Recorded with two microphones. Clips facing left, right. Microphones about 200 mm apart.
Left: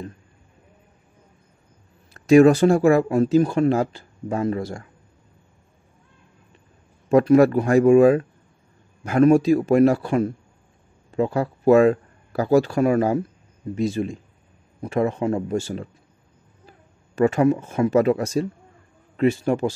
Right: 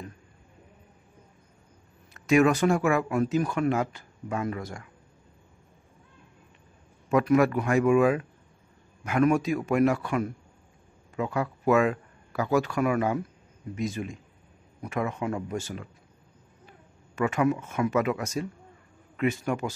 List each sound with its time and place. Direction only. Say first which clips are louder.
2.1 s speech: left 8 dB; 35° left (ahead or behind)
7.1 s speech: left 7 dB; 35° left (ahead or behind)